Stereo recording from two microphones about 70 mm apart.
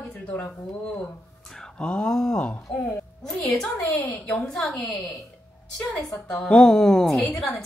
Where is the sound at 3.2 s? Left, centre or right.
Centre.